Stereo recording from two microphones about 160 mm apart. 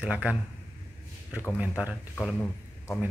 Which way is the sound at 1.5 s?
10° right (ahead or behind).